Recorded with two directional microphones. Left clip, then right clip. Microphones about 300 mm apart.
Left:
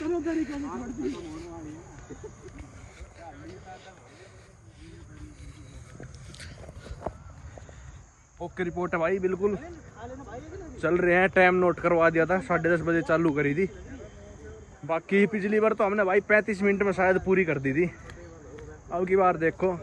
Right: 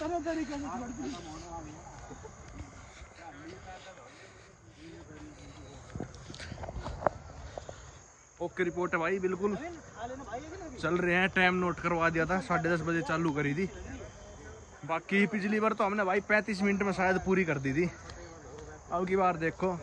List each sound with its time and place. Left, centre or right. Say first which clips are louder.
0.0 s snake: left 4 dB; centre
1.0 s speech: left 7 dB; centre
6.3 s dog: right 3 dB; right
8.4 s speech: left 1 dB; centre
10.8 s speech: left 6 dB; centre
14.9 s a man's voice: left 5 dB; centre